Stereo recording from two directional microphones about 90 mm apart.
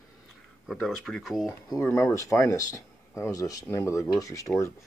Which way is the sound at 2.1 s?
35° left (ahead or behind).